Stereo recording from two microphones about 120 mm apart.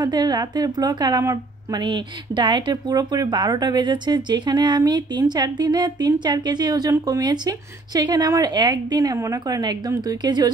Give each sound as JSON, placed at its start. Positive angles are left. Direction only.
{"t": 0.0, "sound": "speech", "side_deg": -35}